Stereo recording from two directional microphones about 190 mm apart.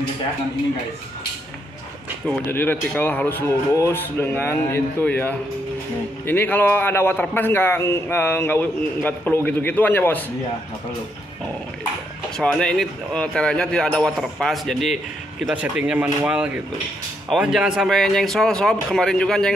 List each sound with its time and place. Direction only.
2.2 s a man's voice: 10° left (ahead or behind)
12.4 s speech: 5° left (ahead or behind)